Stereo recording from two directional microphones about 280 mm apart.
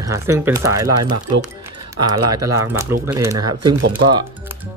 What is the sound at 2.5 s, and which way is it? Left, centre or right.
Speech, right.